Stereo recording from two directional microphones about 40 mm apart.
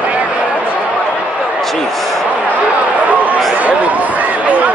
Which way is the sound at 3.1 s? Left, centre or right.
Right.